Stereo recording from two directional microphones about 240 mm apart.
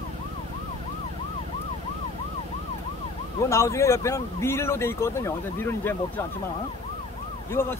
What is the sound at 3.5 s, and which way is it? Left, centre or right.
Speech, centre.